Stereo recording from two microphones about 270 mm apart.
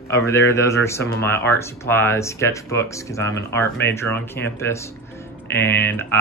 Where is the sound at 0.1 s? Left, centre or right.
Centre.